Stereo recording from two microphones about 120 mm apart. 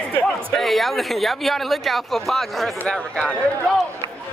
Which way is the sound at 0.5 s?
Centre (ahead or behind).